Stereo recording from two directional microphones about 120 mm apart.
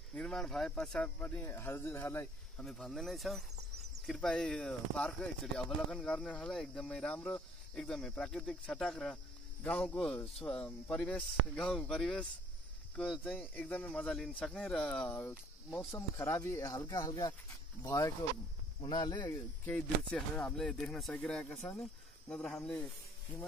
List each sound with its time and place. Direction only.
0.1 s speech: 5° left (ahead or behind); by 2.2 s 20° left (ahead or behind)
2.5 s speech: 5° left (ahead or behind); by 19.3 s 35° left (ahead or behind)
19.3 s speech: 15° left (ahead or behind)